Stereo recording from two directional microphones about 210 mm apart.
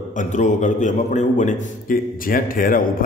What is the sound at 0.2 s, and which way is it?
A man's voice, 35° left (ahead or behind).